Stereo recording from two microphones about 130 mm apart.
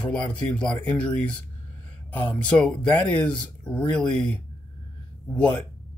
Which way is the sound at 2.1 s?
35° left (ahead or behind).